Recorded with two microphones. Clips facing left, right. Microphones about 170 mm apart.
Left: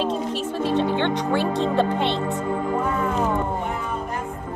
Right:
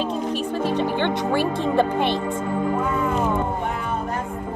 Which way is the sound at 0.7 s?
25° left (ahead or behind).